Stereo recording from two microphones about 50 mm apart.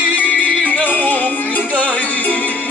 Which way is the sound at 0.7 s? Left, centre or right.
Left.